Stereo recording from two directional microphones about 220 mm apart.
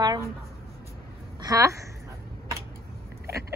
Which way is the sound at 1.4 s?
15° right (ahead or behind).